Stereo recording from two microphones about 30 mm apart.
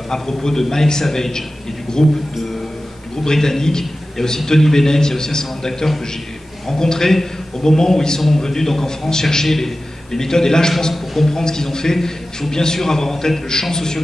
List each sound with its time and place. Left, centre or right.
0.1 s a man's voice: centre
3.3 s a man's voice: centre